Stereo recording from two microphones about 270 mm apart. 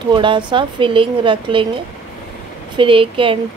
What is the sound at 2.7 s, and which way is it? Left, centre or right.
Speech, centre.